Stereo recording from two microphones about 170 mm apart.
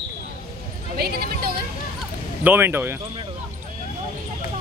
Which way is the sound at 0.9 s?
65° right (ahead or behind).